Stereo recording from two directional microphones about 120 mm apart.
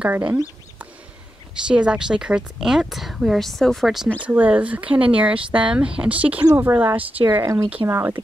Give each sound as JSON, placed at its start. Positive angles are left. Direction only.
{"t": 0.0, "sound": "speech", "side_deg": -10}
{"t": 1.7, "sound": "a woman's voice", "side_deg": -10}
{"t": 7.4, "sound": "speech", "side_deg": -30}